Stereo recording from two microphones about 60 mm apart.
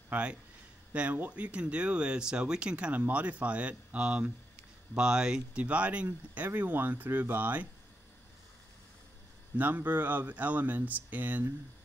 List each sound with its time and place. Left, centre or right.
0.1 s speech: centre
9.6 s speech: right